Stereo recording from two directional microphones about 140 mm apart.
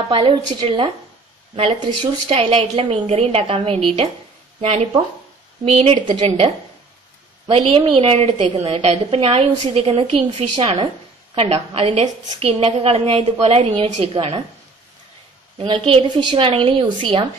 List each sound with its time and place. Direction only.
0.1 s a woman's voice: 35° right (ahead or behind)
15.5 s a woman's voice: 40° right (ahead or behind)